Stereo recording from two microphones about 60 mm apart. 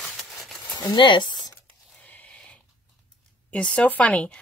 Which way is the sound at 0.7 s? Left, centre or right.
Left.